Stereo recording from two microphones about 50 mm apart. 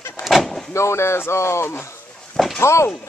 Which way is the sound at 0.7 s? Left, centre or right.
Left.